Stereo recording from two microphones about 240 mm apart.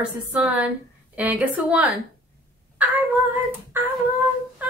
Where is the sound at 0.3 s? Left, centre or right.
Centre.